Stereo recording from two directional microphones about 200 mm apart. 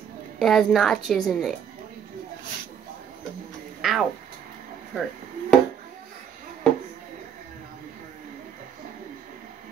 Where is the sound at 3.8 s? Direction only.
Centre (ahead or behind).